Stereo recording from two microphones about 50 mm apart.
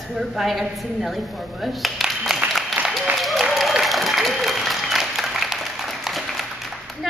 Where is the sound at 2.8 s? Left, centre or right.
Right.